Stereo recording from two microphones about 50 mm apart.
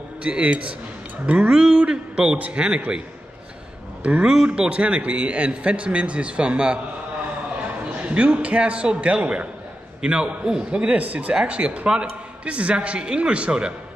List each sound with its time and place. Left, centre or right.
0.2 s speech: right
1.5 s speech: centre
2.6 s speech: centre
4.2 s speech: centre
8.0 s speech: right